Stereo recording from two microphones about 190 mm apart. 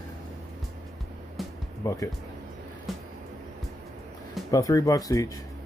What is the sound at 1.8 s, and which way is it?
Speech, 20° left (ahead or behind).